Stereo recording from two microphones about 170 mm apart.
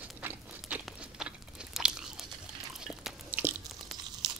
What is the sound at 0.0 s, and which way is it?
Crunch, 10° right (ahead or behind).